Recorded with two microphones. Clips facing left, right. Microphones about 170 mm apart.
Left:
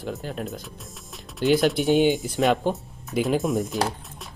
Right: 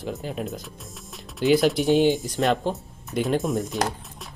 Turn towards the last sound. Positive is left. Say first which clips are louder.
# left 1 dB
turn(degrees=0)  # may be behind; listen again after turning